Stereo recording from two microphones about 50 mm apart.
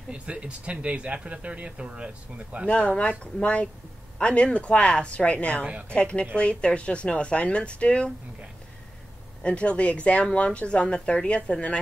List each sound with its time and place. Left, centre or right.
0.1 s speech: right
2.7 s speech: left
9.4 s speech: left